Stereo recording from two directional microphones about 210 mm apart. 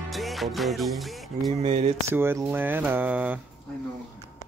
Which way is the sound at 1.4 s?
30° right (ahead or behind).